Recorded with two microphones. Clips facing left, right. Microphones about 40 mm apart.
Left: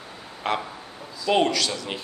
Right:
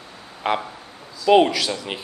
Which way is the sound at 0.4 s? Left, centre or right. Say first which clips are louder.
Right 3 dB; centre.